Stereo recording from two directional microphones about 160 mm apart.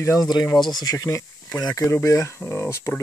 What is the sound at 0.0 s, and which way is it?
Speech, 20° left (ahead or behind).